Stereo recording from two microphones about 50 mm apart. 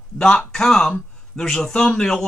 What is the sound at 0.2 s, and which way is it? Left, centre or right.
Speech, centre.